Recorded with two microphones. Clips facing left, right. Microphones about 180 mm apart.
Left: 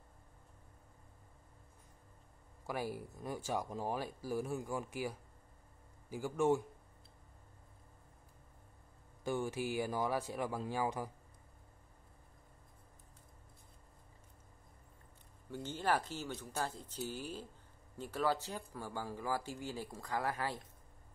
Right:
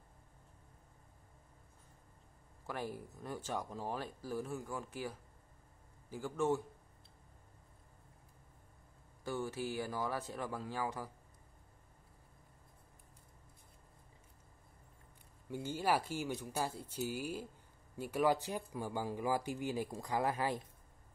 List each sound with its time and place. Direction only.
2.6 s speech: 10° left (ahead or behind)
9.2 s speech: 15° left (ahead or behind)
15.5 s speech: 10° right (ahead or behind)